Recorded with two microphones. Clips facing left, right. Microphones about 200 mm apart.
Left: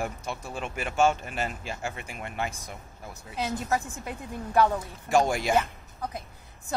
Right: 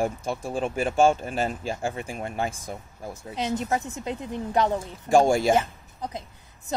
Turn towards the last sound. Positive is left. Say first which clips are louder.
# right 1 dB
turn(degrees=-25)  # may be behind; listen again after turning